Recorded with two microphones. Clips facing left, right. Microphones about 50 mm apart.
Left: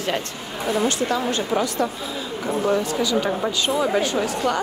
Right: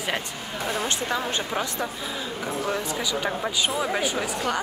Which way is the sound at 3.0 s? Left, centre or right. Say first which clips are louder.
Left 5 dB; centre.